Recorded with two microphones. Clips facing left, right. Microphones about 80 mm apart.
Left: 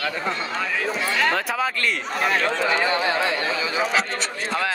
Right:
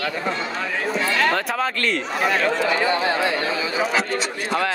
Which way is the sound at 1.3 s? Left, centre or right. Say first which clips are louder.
Right 1 dB; centre.